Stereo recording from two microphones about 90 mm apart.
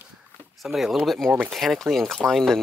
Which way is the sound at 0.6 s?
5° right (ahead or behind).